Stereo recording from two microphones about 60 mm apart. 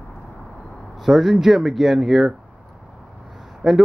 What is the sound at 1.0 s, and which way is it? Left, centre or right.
Speech, centre.